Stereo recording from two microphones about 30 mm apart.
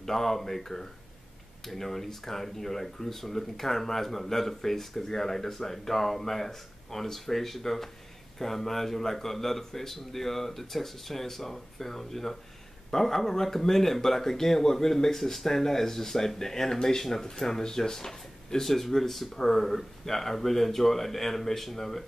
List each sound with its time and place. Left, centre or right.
0.0 s speech: centre